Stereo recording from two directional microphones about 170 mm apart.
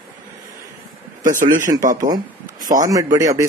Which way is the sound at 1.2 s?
50° right (ahead or behind).